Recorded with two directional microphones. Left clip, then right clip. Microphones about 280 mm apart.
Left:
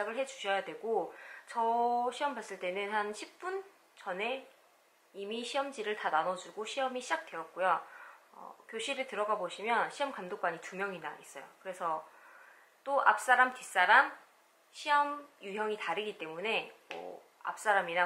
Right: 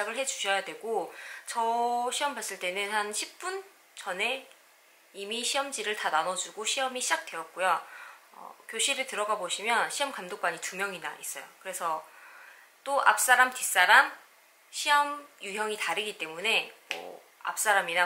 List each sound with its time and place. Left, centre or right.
0.0 s speech: centre
0.8 s speech: left
1.1 s speech: centre